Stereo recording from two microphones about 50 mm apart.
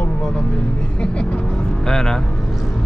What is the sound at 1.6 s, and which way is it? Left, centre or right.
Vehicle, centre.